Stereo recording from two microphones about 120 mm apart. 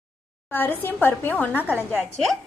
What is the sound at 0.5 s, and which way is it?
A woman's voice, 15° left (ahead or behind).